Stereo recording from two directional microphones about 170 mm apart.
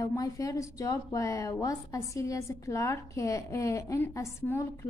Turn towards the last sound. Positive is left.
turn(degrees=15)  # may be behind; listen again after turning